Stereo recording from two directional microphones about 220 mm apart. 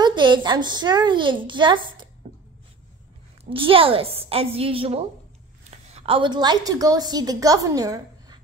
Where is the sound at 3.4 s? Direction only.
25° right (ahead or behind).